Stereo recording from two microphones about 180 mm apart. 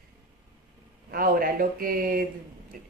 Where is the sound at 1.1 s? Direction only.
55° right (ahead or behind).